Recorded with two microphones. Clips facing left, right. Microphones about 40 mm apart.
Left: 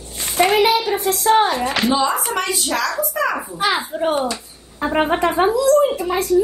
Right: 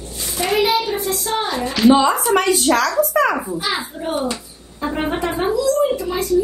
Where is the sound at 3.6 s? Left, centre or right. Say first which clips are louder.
Left 4 dB; left.